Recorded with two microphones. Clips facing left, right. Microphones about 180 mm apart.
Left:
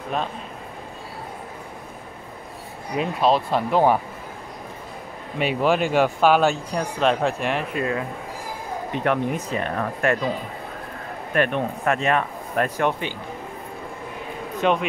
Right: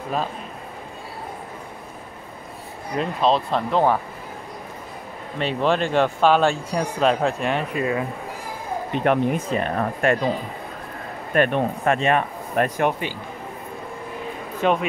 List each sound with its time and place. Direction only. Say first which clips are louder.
0.1 s speech: right 1 dB; 5° right (ahead or behind)
3.0 s speech: even; 5° left (ahead or behind)
5.4 s speech: left 1 dB; 10° left (ahead or behind)
9.0 s speech: right 3 dB; 35° right (ahead or behind)
11.3 s speech: right 3 dB; 35° right (ahead or behind); by 12.9 s 20° right (ahead or behind)
14.6 s speech: even; centre (ahead or behind)